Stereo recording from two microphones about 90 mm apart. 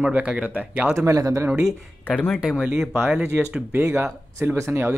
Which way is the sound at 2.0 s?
15° left (ahead or behind).